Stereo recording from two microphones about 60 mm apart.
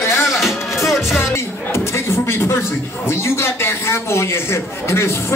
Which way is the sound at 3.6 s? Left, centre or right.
Left.